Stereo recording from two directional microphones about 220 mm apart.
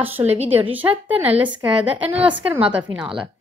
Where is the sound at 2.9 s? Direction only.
5° right (ahead or behind).